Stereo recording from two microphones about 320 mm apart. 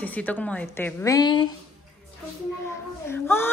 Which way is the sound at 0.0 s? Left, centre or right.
Centre.